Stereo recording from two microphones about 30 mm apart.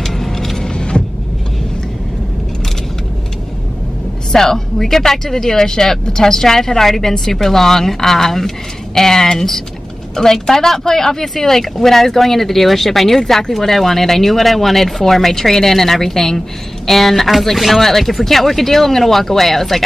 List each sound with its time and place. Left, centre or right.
0.0 s vehicle: centre
0.6 s power windows: left
4.3 s speech: centre